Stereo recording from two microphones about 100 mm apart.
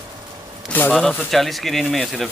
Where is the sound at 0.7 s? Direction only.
20° left (ahead or behind).